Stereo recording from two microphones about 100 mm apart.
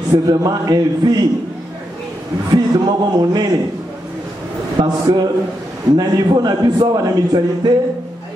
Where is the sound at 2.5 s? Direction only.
45° right (ahead or behind).